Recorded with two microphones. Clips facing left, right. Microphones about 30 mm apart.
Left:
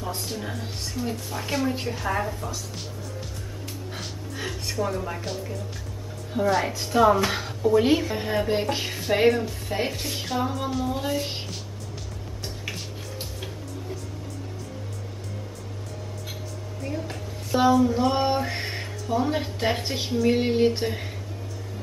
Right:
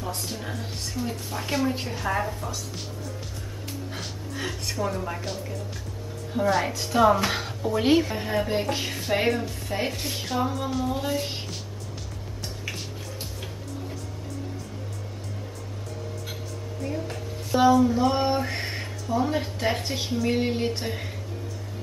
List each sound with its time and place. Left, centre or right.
0.0 s speech: centre
3.9 s speech: centre
16.8 s music: centre
20.3 s speech: centre